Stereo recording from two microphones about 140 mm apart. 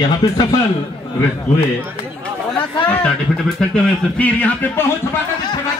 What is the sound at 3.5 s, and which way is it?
Speech, 10° left (ahead or behind).